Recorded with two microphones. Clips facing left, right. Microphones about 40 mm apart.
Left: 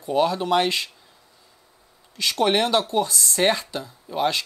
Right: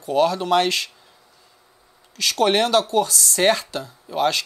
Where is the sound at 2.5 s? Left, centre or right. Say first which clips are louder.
Right 2 dB; left.